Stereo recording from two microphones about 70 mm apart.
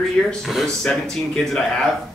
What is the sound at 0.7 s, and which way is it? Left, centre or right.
Speech, centre.